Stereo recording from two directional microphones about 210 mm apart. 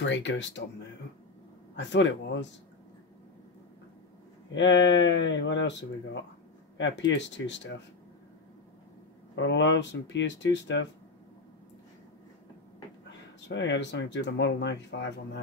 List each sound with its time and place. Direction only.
0.0 s speech: 60° left (ahead or behind)
1.8 s speech: 60° left (ahead or behind)
4.6 s speech: 60° left (ahead or behind)
9.3 s speech: 60° left (ahead or behind)
13.5 s speech: 60° left (ahead or behind)